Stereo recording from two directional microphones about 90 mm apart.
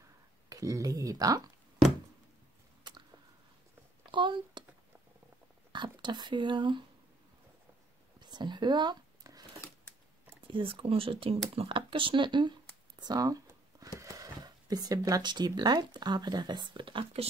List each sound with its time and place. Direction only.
0.5 s speech: 40° right (ahead or behind)
4.1 s speech: 60° right (ahead or behind)
5.7 s speech: 55° right (ahead or behind)
8.2 s a sound: 55° right (ahead or behind)
10.4 s speech: 80° right; by 12.5 s 60° right (ahead or behind)
13.0 s a sound: 45° right (ahead or behind)
13.9 s speech: 40° right (ahead or behind); by 17.3 s 80° right